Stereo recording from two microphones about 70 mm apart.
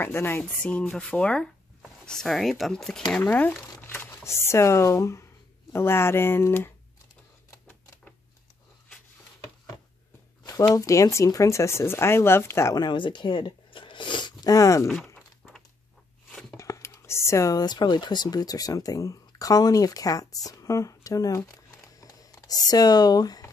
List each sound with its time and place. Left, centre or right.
0.0 s speech: left
0.6 s speech: centre
3.2 s speech: left
10.7 s speech: left
12.7 s speech: left
14.2 s speech: left
16.3 s a sound: centre
16.5 s a sound: left
17.6 s speech: left
22.0 s a sound: left